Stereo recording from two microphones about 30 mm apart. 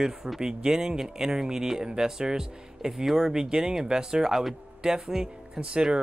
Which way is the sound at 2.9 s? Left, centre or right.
Centre.